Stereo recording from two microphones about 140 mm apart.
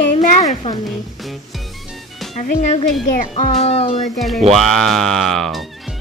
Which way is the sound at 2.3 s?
55° left (ahead or behind).